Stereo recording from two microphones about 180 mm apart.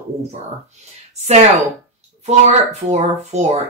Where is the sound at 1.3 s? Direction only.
40° right (ahead or behind).